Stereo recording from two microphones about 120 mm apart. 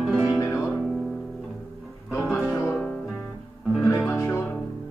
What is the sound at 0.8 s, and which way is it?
Music, centre (ahead or behind).